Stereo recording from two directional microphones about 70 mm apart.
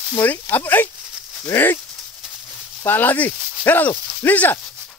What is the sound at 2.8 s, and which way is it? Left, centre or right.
Speech, left.